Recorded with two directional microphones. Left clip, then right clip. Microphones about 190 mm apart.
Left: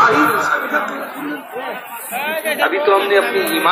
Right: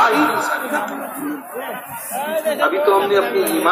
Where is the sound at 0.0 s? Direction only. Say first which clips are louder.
Left 3 dB; 50° right (ahead or behind).